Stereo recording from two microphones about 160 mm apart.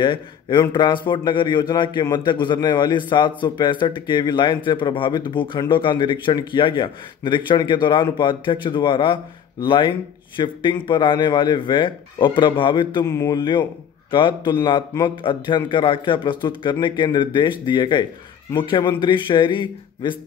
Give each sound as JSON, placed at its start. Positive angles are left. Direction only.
{"t": 0.0, "sound": "a man's voice", "side_deg": 30}
{"t": 13.0, "sound": "a man's voice", "side_deg": 15}